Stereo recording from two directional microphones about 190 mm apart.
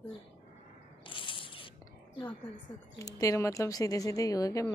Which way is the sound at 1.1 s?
25° left (ahead or behind).